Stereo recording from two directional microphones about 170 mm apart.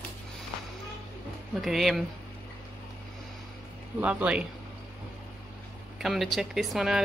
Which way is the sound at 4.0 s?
10° right (ahead or behind).